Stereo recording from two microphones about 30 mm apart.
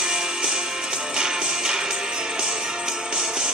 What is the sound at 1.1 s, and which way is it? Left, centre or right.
Music, right.